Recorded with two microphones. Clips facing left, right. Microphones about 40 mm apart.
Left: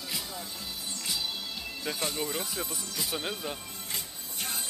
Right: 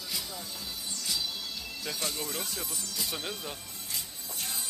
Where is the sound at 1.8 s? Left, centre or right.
Centre.